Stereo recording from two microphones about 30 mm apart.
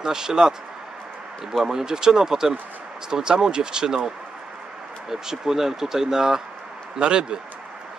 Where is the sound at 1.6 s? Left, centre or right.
Right.